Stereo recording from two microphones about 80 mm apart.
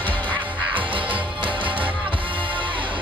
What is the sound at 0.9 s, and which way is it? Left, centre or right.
Music, right.